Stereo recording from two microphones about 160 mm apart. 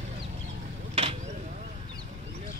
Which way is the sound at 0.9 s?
35° right (ahead or behind).